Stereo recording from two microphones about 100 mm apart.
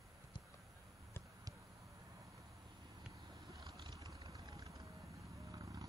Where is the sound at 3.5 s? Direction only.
40° right (ahead or behind).